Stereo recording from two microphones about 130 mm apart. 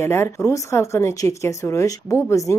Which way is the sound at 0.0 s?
20° left (ahead or behind).